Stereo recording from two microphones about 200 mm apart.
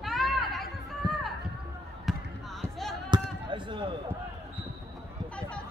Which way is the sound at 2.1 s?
Centre (ahead or behind).